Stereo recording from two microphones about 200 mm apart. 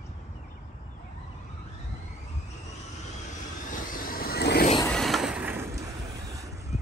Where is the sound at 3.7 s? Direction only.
45° left (ahead or behind).